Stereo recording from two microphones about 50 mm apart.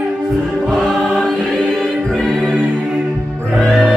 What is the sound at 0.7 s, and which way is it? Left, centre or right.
Choir, centre.